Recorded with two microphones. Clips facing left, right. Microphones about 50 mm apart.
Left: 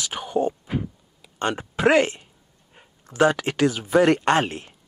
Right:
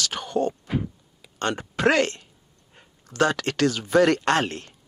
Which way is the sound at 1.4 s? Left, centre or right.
Centre.